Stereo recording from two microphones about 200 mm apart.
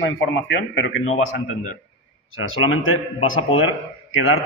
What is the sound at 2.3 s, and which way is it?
A man's voice, 85° left.